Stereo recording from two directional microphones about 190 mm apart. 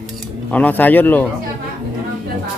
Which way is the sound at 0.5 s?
10° left (ahead or behind).